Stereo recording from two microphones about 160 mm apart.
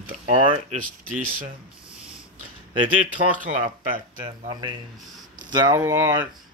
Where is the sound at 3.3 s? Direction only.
55° right (ahead or behind).